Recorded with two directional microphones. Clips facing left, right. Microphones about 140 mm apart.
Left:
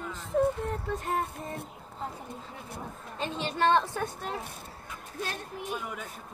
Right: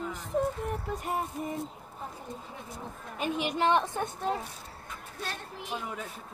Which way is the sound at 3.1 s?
10° right (ahead or behind).